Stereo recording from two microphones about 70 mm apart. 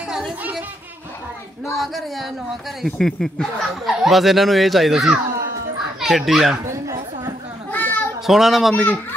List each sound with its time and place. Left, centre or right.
0.4 s speech: right
1.8 s a child's voice: centre
6.7 s a sound: right
7.7 s children playing: left
8.3 s speech: centre